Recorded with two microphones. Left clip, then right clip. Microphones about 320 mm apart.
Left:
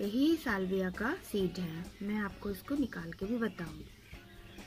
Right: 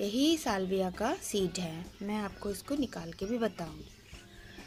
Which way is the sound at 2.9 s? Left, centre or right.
Centre.